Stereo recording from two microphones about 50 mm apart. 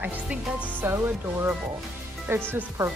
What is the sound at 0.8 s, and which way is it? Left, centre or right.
Music, right.